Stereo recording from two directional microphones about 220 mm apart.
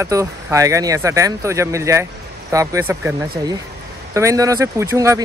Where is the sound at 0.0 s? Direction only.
15° right (ahead or behind).